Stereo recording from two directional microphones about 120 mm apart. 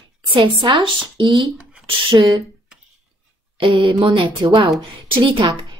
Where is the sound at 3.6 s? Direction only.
45° right (ahead or behind).